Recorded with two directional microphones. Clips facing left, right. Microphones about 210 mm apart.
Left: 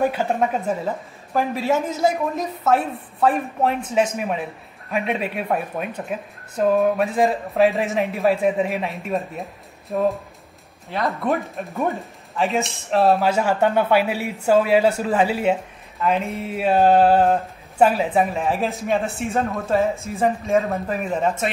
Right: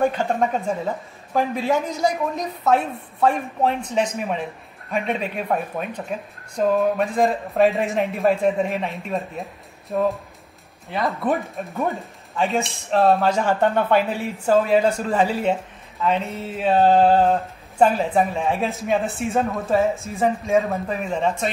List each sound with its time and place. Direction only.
0.0 s speech: 5° left (ahead or behind)
1.3 s mantra: centre (ahead or behind)
10.9 s speech: centre (ahead or behind)
16.0 s mantra: 10° left (ahead or behind)